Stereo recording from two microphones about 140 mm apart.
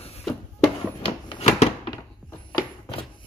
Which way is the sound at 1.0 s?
50° left (ahead or behind).